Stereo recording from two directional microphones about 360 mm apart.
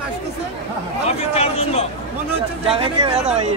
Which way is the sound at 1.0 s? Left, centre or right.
Centre.